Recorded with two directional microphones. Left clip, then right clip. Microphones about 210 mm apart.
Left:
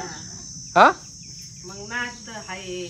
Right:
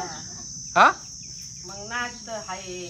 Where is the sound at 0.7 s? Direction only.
10° right (ahead or behind).